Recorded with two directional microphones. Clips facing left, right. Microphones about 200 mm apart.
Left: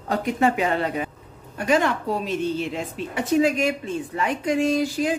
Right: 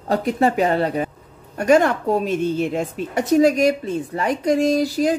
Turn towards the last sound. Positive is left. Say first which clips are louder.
# right 4 dB
turn(degrees=-40)  # may be behind; listen again after turning